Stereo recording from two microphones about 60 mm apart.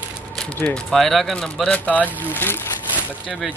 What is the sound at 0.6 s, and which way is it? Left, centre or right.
Speech, left.